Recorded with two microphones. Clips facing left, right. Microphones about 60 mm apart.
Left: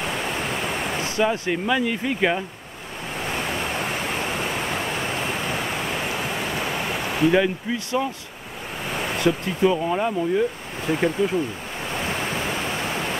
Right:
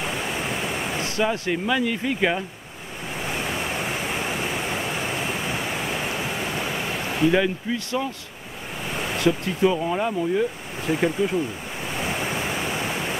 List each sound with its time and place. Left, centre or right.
1.1 s speech: centre
6.7 s speech: centre
9.2 s speech: centre